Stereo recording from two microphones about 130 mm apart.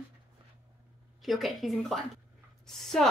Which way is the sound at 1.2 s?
Centre (ahead or behind).